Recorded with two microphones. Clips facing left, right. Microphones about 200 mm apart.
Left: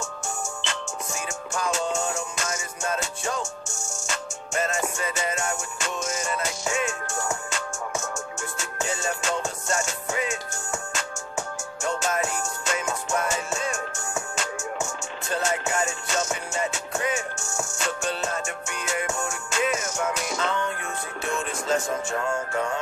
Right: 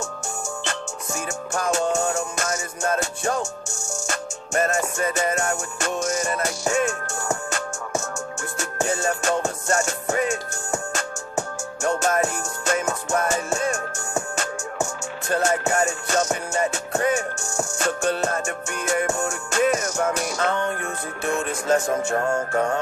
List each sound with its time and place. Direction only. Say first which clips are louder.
2.1 s music: right 5 dB; 60° right (ahead or behind)
4.1 s music: right 4 dB; 50° right (ahead or behind)
8.4 s music: right 5 dB; 60° right (ahead or behind); by 11.4 s 40° right (ahead or behind)
11.8 s music: right 5 dB; 55° right (ahead or behind)
15.2 s music: right 5 dB; 55° right (ahead or behind)
16.2 s music: right 5 dB; 45° right (ahead or behind)